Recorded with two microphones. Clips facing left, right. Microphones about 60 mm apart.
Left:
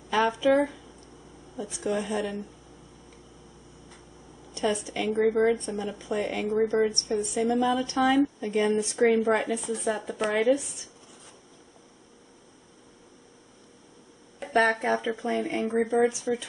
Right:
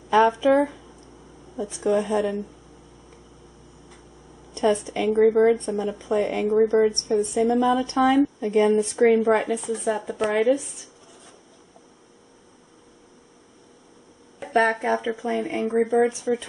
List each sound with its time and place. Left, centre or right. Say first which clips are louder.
0.1 s speech: right 5 dB; centre
1.8 s a woman's voice: right 7 dB; centre
4.6 s a woman's voice: right 6 dB; centre
7.4 s a woman's voice: right 2 dB; centre
14.4 s a woman's voice: right 2 dB; centre